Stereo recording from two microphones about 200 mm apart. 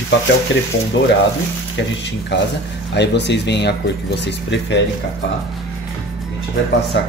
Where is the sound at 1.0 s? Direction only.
70° left (ahead or behind).